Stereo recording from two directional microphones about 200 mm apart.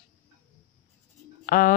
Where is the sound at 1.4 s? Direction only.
45° left (ahead or behind).